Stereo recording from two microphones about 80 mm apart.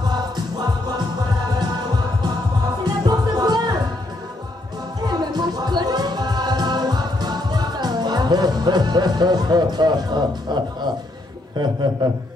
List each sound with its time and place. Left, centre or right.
0.0 s music: right
2.8 s music: right
5.0 s music: right
11.5 s a man's voice: right